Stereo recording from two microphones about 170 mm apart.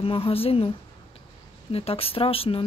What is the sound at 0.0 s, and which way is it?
A woman's voice, 35° left (ahead or behind).